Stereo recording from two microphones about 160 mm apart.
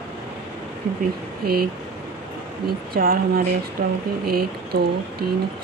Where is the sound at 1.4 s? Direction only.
70° right (ahead or behind).